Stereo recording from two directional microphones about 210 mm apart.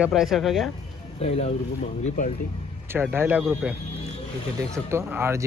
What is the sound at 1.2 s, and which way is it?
Speech, 30° left (ahead or behind).